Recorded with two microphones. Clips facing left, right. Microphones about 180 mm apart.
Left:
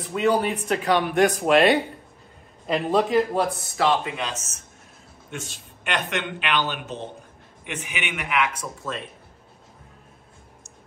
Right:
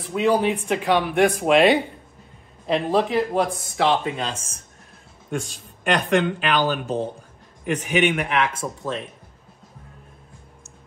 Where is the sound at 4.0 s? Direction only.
30° right (ahead or behind).